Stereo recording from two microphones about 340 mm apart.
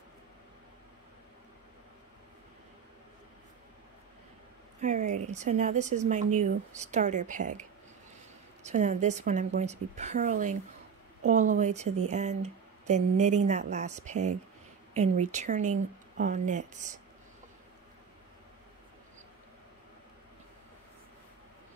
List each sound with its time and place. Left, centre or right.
4.8 s speech: right
8.6 s speech: right